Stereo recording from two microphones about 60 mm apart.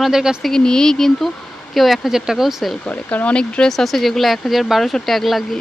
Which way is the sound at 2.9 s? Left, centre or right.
Left.